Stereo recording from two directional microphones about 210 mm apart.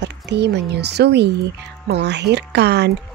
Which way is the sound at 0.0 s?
55° right (ahead or behind).